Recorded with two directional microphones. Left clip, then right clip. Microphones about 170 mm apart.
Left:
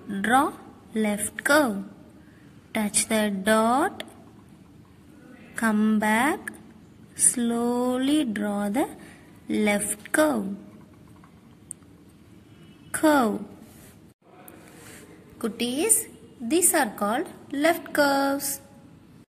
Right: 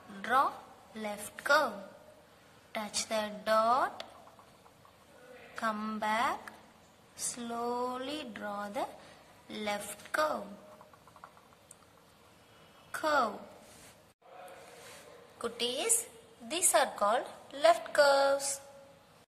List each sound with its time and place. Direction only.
0.2 s a woman's voice: 20° left (ahead or behind)
2.7 s a woman's voice: 25° left (ahead or behind)
5.6 s a woman's voice: 25° left (ahead or behind)
13.0 s a woman's voice: 25° left (ahead or behind)
15.4 s a woman's voice: 15° left (ahead or behind)